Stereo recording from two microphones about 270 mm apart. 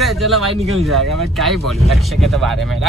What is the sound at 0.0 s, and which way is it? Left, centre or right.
Speech, centre.